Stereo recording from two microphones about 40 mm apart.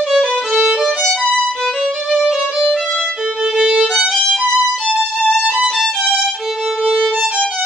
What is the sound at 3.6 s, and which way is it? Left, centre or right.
Violin, centre.